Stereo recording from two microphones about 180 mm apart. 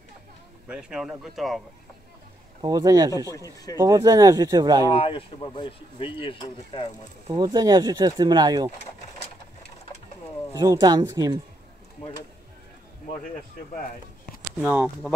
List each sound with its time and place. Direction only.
0.7 s speech: 5° right (ahead or behind)
2.6 s speech: 20° right (ahead or behind)
4.8 s speech: 30° left (ahead or behind)
7.2 s speech: 25° right (ahead or behind)
10.6 s speech: 20° right (ahead or behind)
14.6 s speech: 10° right (ahead or behind)